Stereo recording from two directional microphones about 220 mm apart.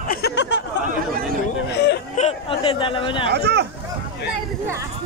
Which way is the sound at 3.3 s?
50° right (ahead or behind).